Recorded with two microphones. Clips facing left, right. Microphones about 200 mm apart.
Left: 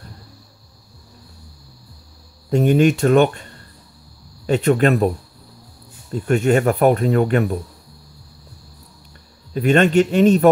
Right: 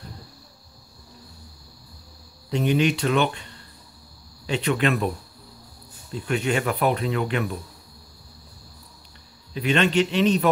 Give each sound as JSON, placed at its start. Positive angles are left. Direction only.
{"t": 2.5, "sound": "speech", "side_deg": 50}
{"t": 6.1, "sound": "speech", "side_deg": 45}
{"t": 9.5, "sound": "speech", "side_deg": 50}